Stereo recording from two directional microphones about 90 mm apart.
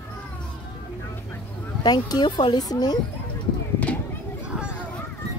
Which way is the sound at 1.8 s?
50° left (ahead or behind).